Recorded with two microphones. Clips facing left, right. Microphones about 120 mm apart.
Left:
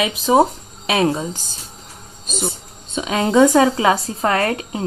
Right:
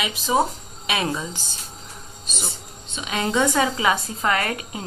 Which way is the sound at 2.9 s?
45° left (ahead or behind).